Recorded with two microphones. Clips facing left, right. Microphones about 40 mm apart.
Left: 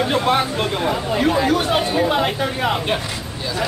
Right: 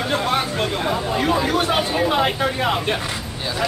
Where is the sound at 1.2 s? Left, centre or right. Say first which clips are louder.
Left 3 dB; centre.